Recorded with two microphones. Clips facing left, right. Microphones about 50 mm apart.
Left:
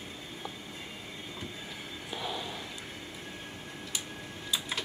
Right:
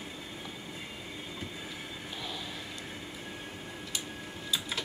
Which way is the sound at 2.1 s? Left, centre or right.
Centre.